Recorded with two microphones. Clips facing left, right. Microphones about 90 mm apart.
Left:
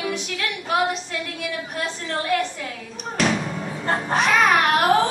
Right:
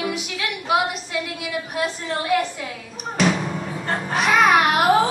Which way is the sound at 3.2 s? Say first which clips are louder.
Right 2 dB; centre (ahead or behind).